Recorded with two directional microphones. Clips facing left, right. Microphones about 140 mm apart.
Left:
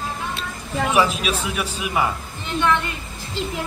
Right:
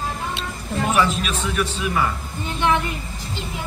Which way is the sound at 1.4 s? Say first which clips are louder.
Right 2 dB; 10° left (ahead or behind).